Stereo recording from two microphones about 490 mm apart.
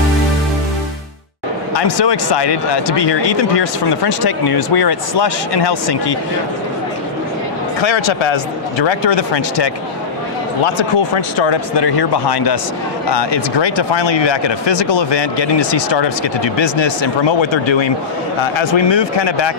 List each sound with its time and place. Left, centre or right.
1.8 s speech: left
7.8 s speech: left
10.6 s speech: left